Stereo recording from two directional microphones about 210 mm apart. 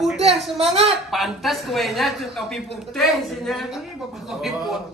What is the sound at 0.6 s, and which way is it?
Speech, 30° right (ahead or behind).